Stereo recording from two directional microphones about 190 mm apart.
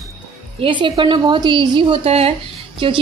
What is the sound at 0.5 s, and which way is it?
Speech, 25° right (ahead or behind).